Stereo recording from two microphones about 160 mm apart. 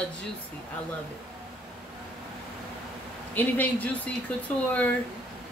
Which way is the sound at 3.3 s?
10° left (ahead or behind).